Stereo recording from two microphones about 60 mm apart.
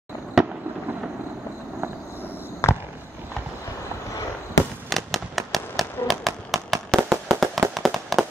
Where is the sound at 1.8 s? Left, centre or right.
Right.